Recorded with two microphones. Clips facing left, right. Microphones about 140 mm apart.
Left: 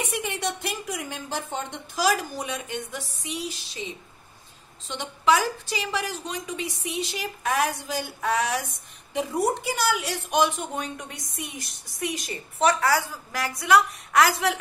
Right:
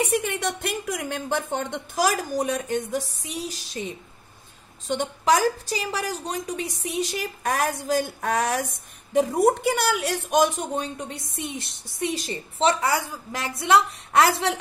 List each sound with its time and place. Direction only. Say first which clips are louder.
0.0 s a woman's voice: right 5 dB; 45° right (ahead or behind); by 14.3 s 25° right (ahead or behind)